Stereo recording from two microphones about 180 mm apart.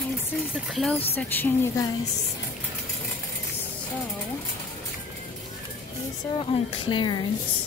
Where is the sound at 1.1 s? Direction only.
10° left (ahead or behind).